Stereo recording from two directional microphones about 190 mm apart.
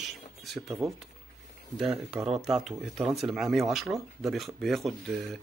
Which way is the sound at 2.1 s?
Centre (ahead or behind).